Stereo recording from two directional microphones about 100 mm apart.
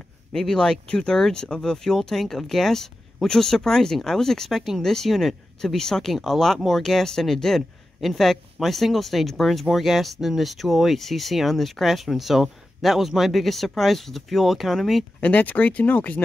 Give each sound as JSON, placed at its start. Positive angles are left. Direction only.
{"t": 0.3, "sound": "speech", "side_deg": 5}
{"t": 15.1, "sound": "speech", "side_deg": 15}